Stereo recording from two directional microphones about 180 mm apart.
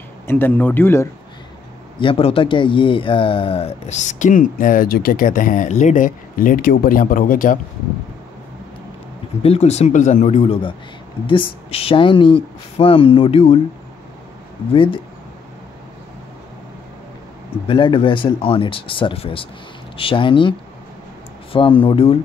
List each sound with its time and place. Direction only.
0.3 s speech: 10° left (ahead or behind)
2.0 s speech: 30° left (ahead or behind); by 7.5 s 50° left (ahead or behind)
9.4 s speech: 35° left (ahead or behind)
14.7 s speech: 30° left (ahead or behind)
17.6 s speech: 30° left (ahead or behind)